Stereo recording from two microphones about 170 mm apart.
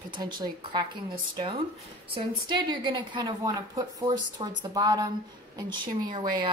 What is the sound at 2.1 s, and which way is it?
A woman's voice, 30° right (ahead or behind).